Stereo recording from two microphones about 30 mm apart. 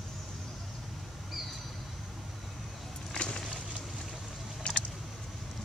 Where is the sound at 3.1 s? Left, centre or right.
Left.